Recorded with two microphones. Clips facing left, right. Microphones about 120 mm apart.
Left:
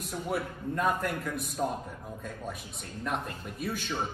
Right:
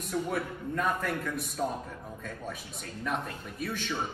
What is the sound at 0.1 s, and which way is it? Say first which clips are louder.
A man's voice: right 2 dB; centre (ahead or behind).